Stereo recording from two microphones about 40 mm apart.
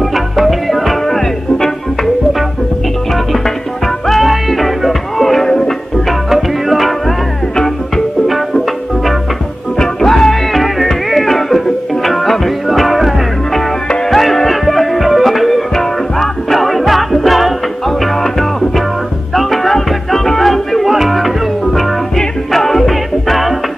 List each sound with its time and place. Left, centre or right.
0.1 s music: centre
3.4 s music: centre
6.3 s music: centre